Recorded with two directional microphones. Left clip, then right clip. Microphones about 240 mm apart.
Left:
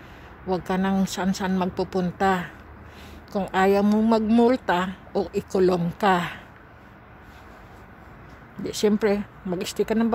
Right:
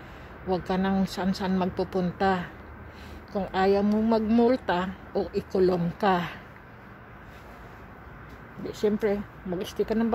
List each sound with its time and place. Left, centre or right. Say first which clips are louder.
0.5 s a woman's voice: left 2 dB; centre
8.6 s speech: left 4 dB; left